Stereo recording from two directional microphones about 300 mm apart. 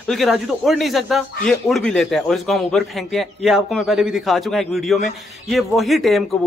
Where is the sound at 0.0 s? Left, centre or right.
Centre.